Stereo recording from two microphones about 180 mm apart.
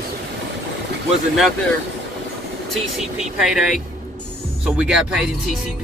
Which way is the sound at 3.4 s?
5° right (ahead or behind).